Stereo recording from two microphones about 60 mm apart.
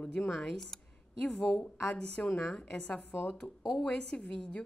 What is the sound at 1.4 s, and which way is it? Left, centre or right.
Speech, left.